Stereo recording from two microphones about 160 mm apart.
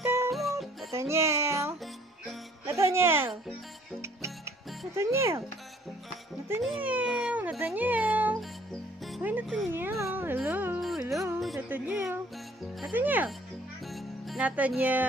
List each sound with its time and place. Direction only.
0.0 s music: 15° right (ahead or behind)
0.3 s music: centre (ahead or behind)
0.9 s music: 15° right (ahead or behind)
6.8 s cat: 10° right (ahead or behind)
9.2 s music: 10° right (ahead or behind)
9.7 s a sound: 15° right (ahead or behind)
11.3 s music: centre (ahead or behind)
13.8 s music: centre (ahead or behind)